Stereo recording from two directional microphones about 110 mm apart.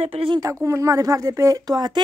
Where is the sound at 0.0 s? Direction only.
55° right (ahead or behind).